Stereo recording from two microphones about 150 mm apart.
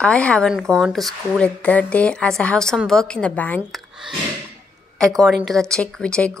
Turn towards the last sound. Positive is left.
turn(degrees=5)  # may be behind; listen again after turning